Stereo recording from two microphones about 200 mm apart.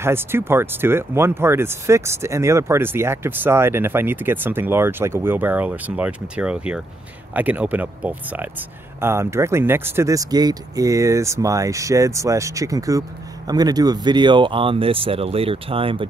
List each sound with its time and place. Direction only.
0.0 s speech: 10° right (ahead or behind)